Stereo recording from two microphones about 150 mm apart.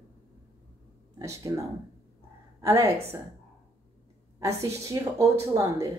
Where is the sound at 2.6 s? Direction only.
15° right (ahead or behind).